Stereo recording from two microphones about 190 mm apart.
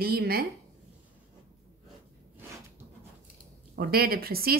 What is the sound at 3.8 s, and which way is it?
Speech, 55° right (ahead or behind).